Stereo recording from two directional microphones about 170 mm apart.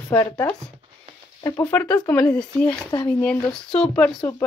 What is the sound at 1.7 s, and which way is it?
Speech, 10° left (ahead or behind).